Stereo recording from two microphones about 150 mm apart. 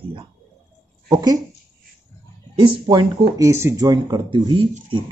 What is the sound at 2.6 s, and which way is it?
Speech, 30° right (ahead or behind).